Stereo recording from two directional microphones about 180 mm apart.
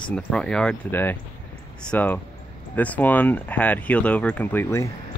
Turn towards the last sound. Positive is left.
turn(degrees=15)  # may be behind; listen again after turning